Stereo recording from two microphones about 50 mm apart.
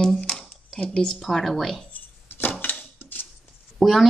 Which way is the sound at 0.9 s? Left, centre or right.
Centre.